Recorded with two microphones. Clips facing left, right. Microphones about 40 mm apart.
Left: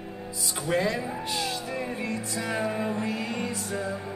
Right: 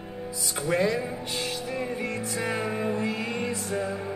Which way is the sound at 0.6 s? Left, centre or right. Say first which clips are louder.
Right 1 dB; right.